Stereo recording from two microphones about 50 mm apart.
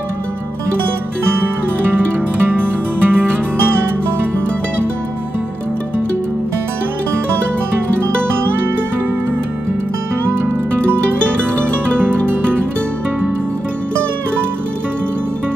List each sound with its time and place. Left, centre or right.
2.4 s music: right